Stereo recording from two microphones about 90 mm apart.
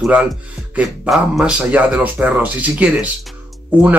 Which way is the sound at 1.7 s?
15° right (ahead or behind).